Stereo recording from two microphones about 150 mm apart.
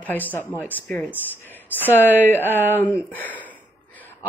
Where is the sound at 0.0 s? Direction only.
10° left (ahead or behind).